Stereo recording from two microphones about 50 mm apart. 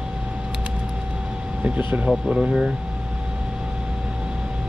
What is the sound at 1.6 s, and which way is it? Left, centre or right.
Speech, right.